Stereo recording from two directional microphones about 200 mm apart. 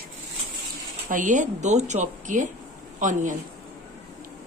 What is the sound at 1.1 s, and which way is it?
A woman's voice, 40° right (ahead or behind).